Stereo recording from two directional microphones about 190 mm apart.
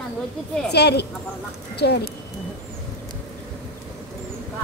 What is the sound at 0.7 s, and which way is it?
Speech, 60° left (ahead or behind).